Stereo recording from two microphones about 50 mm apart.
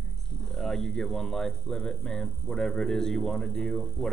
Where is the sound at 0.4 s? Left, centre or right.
Centre.